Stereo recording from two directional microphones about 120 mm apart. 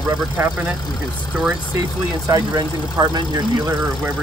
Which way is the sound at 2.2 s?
35° right (ahead or behind).